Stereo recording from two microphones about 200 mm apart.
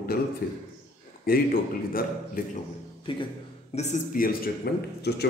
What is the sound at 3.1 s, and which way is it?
Speech, 25° left (ahead or behind).